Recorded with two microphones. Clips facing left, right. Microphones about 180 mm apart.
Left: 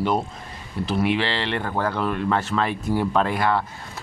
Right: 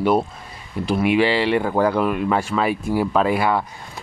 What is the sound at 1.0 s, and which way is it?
Speech, 10° right (ahead or behind).